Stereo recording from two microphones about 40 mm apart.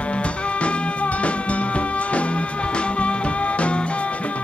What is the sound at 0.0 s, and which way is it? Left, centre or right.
Music, left.